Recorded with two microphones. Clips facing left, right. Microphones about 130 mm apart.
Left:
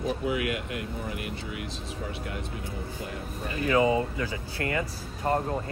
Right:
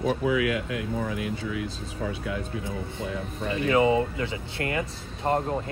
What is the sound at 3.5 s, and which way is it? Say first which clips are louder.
Speech: right 2 dB; 25° right (ahead or behind).